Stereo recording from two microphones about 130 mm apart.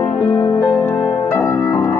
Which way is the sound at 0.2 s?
35° left (ahead or behind).